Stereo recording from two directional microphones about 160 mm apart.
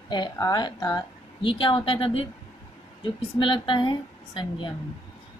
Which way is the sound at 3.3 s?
30° left (ahead or behind).